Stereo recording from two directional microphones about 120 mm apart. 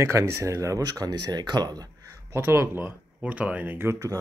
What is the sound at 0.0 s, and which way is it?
Speech, 25° right (ahead or behind).